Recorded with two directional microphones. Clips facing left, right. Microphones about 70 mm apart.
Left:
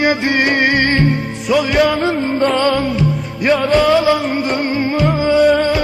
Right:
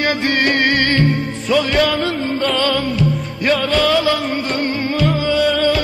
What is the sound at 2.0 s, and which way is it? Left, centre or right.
Music, left.